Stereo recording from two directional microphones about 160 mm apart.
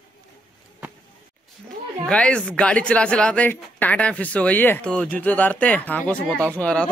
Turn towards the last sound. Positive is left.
turn(degrees=5)  # may be behind; listen again after turning